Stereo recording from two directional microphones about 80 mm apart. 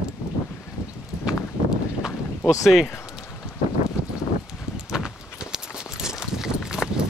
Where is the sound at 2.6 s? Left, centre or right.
Centre.